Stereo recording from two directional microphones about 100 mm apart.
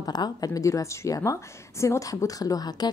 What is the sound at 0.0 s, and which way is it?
A woman's voice, 40° left (ahead or behind).